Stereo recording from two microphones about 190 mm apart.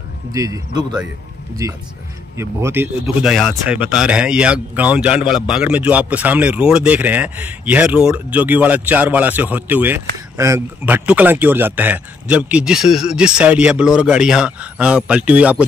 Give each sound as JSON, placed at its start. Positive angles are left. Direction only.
{"t": 0.3, "sound": "a man's voice", "side_deg": -15}